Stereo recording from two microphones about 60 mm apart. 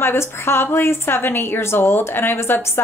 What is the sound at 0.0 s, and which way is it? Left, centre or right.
A woman's voice, left.